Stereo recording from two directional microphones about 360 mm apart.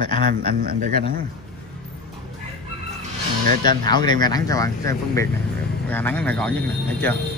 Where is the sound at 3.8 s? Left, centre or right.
Centre.